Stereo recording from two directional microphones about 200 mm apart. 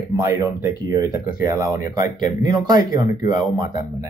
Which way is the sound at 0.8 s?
20° right (ahead or behind).